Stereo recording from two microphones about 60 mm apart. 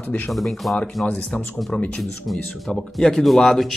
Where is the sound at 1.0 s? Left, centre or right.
Left.